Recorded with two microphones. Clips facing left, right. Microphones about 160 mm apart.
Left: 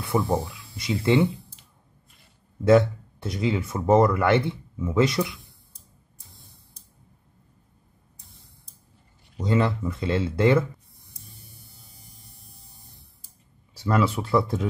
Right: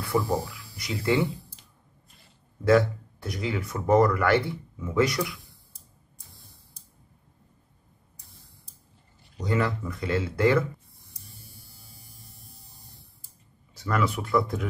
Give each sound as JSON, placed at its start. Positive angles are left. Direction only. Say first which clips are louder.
{"t": 0.0, "sound": "speech", "louder": "left 2 dB", "side_deg": 20}
{"t": 2.6, "sound": "speech", "louder": "left 3 dB", "side_deg": 20}
{"t": 9.4, "sound": "speech", "louder": "left 3 dB", "side_deg": 25}
{"t": 13.7, "sound": "speech", "louder": "left 4 dB", "side_deg": 25}